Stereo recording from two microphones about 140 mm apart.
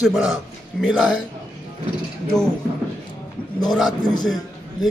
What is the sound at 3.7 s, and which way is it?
Speech, centre (ahead or behind).